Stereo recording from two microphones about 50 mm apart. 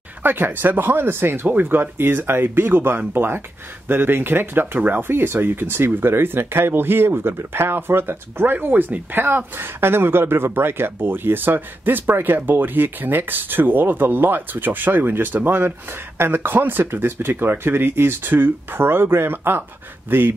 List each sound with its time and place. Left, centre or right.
0.2 s speech: right
4.7 s speech: right
5.0 s speech: right